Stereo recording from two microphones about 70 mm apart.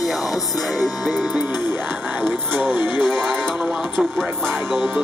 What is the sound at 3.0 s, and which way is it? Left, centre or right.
Music, centre.